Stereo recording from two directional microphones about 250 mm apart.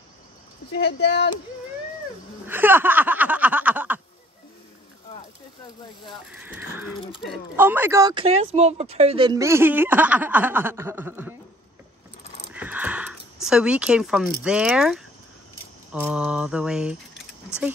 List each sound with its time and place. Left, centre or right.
0.7 s speech: left
2.4 s snicker: centre
6.3 s mantra: centre
7.2 s speech: centre
12.4 s a sound: centre
14.4 s mantra: centre
16.1 s mantra: centre